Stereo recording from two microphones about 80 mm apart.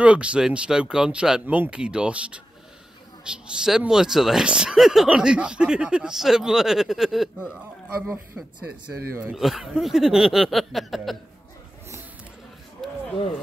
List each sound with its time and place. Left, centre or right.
0.0 s speech: centre
1.4 s speech: centre
8.3 s speech: centre
9.4 s speech: centre